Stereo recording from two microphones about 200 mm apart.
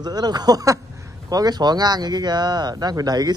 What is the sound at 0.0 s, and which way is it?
Speech, 20° right (ahead or behind).